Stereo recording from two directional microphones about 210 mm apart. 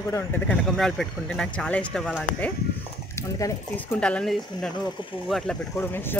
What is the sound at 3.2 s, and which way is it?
Speech, 15° left (ahead or behind).